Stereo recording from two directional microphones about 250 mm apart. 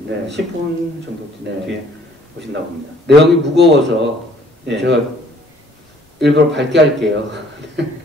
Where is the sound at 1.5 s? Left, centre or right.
Right.